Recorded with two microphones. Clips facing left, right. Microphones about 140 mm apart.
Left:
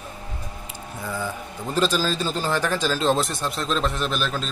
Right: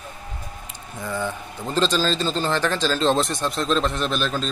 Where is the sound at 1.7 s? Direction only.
10° left (ahead or behind).